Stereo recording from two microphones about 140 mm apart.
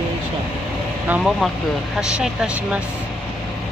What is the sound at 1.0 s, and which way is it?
Speech, 5° right (ahead or behind).